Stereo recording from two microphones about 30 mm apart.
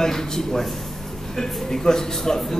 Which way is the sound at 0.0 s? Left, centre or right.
Centre.